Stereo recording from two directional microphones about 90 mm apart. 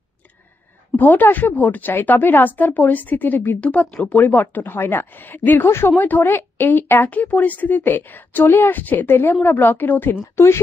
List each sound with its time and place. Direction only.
0.9 s a woman's voice: 20° left (ahead or behind)